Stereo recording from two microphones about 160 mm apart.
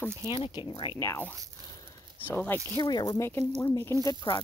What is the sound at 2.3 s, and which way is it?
Speech, 10° left (ahead or behind).